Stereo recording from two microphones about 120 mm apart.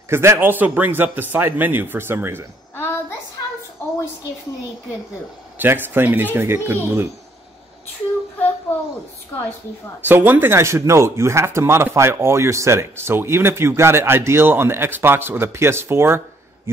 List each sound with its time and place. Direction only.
0.1 s speech: 20° right (ahead or behind)
2.7 s a sound: 20° left (ahead or behind)
5.6 s speech: 15° right (ahead or behind)
10.0 s speech: 15° right (ahead or behind)